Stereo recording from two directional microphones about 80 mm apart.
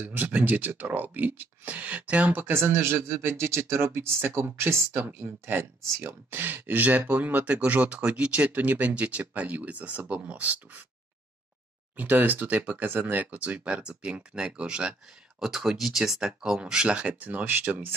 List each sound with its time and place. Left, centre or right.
0.0 s speech: right
12.0 s speech: right